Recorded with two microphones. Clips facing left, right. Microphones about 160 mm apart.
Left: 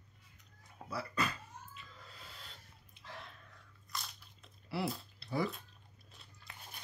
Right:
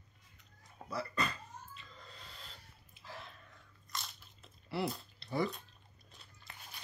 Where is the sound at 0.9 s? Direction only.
5° left (ahead or behind).